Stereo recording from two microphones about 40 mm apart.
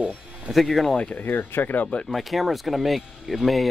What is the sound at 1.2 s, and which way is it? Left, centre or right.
Speech, left.